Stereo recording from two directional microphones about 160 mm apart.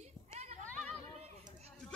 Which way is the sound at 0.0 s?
45° right (ahead or behind).